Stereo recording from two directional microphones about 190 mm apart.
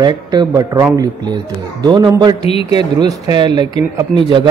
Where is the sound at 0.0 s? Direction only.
20° right (ahead or behind).